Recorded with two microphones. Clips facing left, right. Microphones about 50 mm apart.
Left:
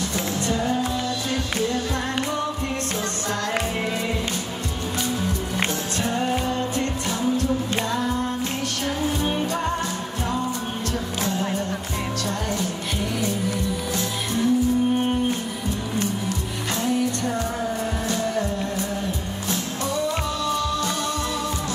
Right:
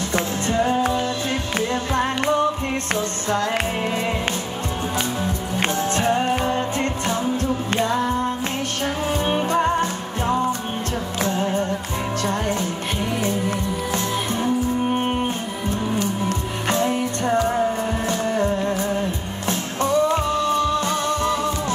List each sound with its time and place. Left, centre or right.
0.1 s music: right
5.9 s music: right
16.7 s music: right